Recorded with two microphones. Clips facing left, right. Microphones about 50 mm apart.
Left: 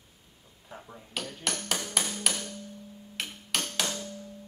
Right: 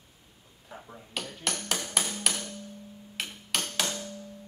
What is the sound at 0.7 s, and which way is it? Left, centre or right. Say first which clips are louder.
Speech: even; centre.